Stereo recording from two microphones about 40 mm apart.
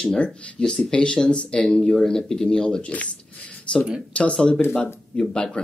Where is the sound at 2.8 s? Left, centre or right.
Left.